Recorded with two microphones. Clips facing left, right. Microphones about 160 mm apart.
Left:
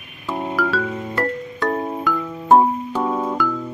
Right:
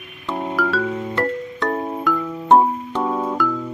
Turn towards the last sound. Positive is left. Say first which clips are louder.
# even
turn(degrees=0)  # may be behind; listen again after turning